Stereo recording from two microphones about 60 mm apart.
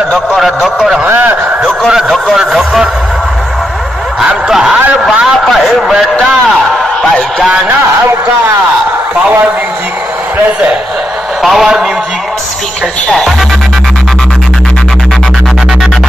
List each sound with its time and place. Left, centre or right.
0.4 s a man's voice: centre
1.0 s a sound: right
1.9 s speech: centre
4.5 s a man's voice: centre
7.0 s speech: centre
11.4 s speech: centre